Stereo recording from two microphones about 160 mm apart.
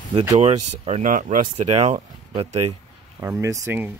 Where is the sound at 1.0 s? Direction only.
55° right (ahead or behind).